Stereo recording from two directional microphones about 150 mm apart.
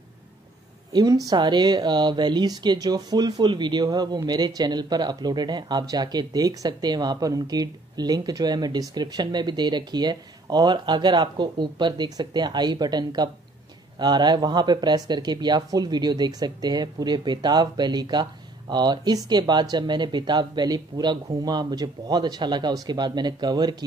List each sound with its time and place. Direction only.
0.9 s speech: 25° right (ahead or behind)